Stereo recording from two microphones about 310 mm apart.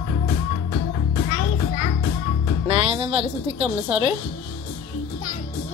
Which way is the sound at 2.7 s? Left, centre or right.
Centre.